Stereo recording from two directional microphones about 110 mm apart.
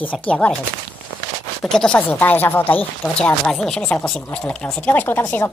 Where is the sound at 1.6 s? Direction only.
5° left (ahead or behind).